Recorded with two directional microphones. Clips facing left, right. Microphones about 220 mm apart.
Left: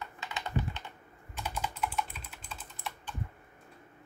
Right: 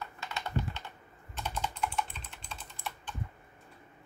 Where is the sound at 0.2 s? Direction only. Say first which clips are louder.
Left 1 dB; 15° left (ahead or behind).